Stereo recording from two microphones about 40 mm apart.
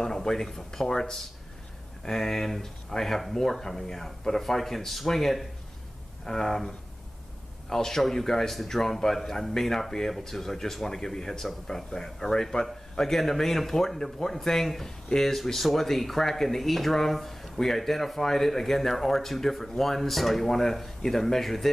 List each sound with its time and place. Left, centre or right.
0.0 s speech: centre
7.7 s speech: centre